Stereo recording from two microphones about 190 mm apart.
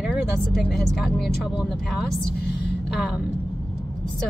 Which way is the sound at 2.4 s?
60° left (ahead or behind).